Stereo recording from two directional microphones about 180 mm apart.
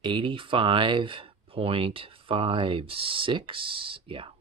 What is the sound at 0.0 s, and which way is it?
Speech, 25° right (ahead or behind).